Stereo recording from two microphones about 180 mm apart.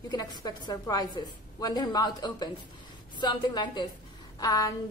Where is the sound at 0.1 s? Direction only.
25° left (ahead or behind).